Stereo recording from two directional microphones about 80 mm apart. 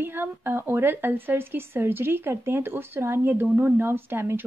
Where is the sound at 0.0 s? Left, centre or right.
Right.